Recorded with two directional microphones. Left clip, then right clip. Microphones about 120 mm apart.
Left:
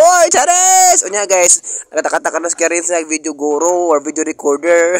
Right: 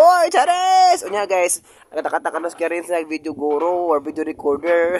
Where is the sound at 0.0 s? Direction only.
25° left (ahead or behind).